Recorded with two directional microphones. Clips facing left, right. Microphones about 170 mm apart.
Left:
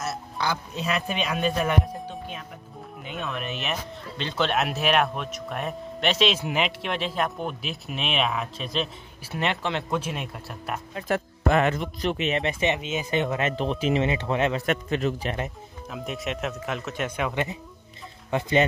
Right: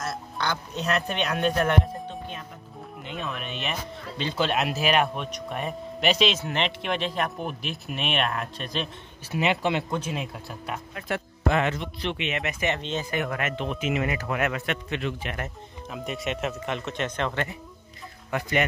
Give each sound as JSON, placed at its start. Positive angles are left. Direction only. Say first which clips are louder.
{"t": 0.0, "sound": "speech", "louder": "left 1 dB", "side_deg": 5}
{"t": 9.8, "sound": "speech", "louder": "left 1 dB", "side_deg": 5}
{"t": 11.1, "sound": "speech", "louder": "left 3 dB", "side_deg": 45}
{"t": 14.7, "sound": "speech", "louder": "left 4 dB", "side_deg": 40}
{"t": 15.9, "sound": "speech", "louder": "even", "side_deg": 0}
{"t": 18.3, "sound": "speech", "louder": "left 4 dB", "side_deg": 30}